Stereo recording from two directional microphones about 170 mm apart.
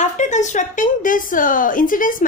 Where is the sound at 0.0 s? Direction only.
45° left (ahead or behind).